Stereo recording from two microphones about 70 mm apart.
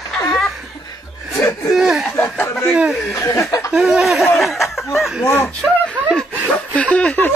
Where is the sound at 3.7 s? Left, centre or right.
Centre.